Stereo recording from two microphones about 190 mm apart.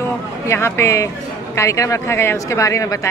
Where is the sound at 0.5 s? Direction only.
15° left (ahead or behind).